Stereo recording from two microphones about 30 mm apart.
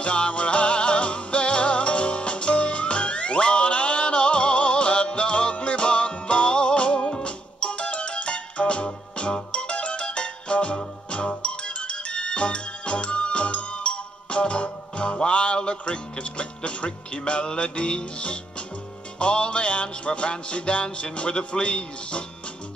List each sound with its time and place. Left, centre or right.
0.0 s music: left
7.0 s music: left
7.2 s music: left